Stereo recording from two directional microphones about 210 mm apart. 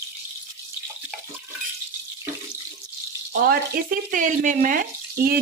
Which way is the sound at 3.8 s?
45° right (ahead or behind).